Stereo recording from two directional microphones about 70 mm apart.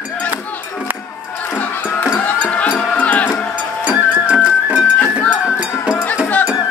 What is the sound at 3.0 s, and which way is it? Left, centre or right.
Cowbell, left.